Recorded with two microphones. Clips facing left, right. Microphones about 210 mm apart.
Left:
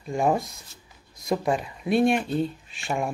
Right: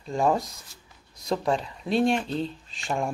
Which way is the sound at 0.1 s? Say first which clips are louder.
Even; 15° left (ahead or behind).